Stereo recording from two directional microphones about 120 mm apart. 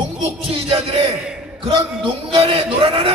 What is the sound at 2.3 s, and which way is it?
Speech, 55° right (ahead or behind).